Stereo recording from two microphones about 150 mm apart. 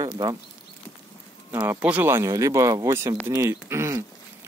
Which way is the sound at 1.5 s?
10° right (ahead or behind).